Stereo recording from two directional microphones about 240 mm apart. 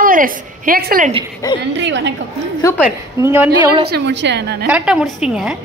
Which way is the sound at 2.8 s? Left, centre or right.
Centre.